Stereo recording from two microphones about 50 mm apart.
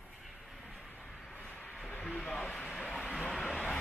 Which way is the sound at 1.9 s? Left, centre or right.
Centre.